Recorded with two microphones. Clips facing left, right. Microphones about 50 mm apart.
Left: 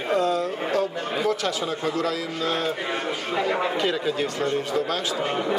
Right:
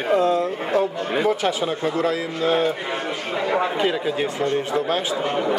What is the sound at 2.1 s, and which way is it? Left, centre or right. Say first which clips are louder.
A man's voice: right 5 dB; centre.